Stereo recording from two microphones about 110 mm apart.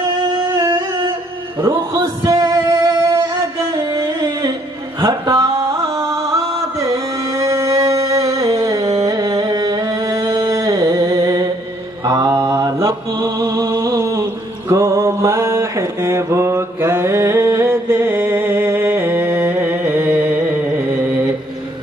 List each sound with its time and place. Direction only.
0.6 s a sound: 35° right (ahead or behind)
1.7 s music: 35° right (ahead or behind)
12.0 s mantra: 35° right (ahead or behind); by 21.3 s 15° right (ahead or behind)